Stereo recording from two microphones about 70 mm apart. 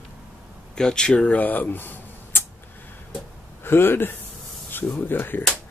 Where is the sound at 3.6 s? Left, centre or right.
Left.